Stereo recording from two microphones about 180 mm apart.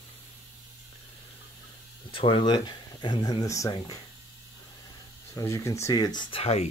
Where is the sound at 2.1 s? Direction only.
30° left (ahead or behind).